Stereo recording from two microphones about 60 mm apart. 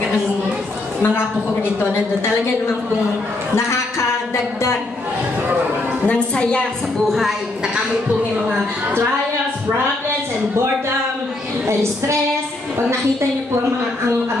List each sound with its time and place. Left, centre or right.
1.0 s a woman's voice: left
6.0 s a woman's voice: centre
7.1 s a woman's voice: centre
11.6 s a sound: right